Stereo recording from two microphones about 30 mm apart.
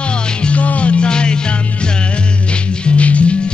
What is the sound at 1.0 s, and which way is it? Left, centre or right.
Music, left.